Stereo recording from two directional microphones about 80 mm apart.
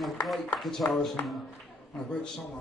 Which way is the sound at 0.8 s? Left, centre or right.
Left.